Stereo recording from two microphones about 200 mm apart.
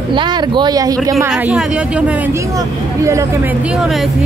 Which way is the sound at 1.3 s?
5° right (ahead or behind).